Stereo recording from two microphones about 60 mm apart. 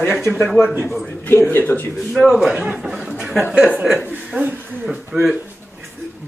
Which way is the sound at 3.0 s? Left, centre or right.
Centre.